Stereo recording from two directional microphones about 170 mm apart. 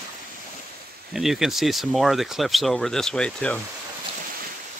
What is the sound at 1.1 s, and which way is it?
Speech, centre (ahead or behind).